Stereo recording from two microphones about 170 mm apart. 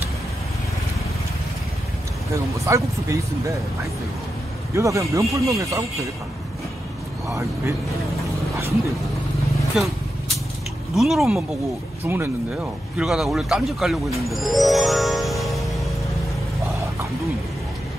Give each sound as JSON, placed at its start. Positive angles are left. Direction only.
{"t": 2.3, "sound": "speech", "side_deg": -15}
{"t": 4.7, "sound": "speech", "side_deg": -20}
{"t": 11.0, "sound": "speech", "side_deg": 0}
{"t": 12.0, "sound": "speech", "side_deg": -10}
{"t": 12.9, "sound": "speech", "side_deg": 0}